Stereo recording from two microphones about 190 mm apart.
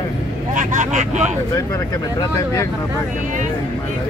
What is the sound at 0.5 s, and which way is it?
Speech, 40° right (ahead or behind).